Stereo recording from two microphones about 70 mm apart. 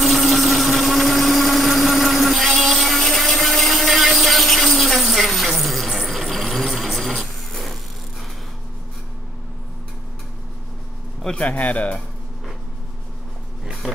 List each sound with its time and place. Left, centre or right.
0.0 s blender: centre
11.2 s speech: centre
13.8 s music: centre